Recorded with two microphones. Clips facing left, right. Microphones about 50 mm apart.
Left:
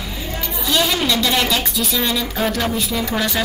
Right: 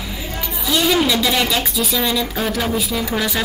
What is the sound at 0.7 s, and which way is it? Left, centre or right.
A woman's voice, centre.